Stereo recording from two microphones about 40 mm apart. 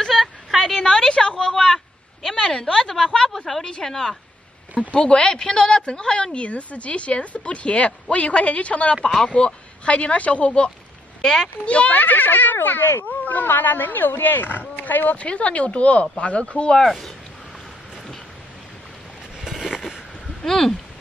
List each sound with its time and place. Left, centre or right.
0.1 s a sound: centre
0.7 s a sound: centre
2.3 s a woman's voice: centre
4.9 s a woman's voice: left
11.2 s speech: centre
11.6 s speech: left
12.0 s speech: left
15.1 s speech: left
16.8 s a woman's voice: centre
19.6 s a sound: centre
20.4 s speech: centre